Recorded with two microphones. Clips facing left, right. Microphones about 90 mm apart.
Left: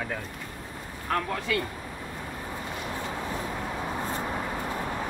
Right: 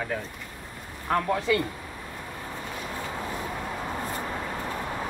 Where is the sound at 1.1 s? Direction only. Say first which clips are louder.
Right 3 dB; 15° right (ahead or behind).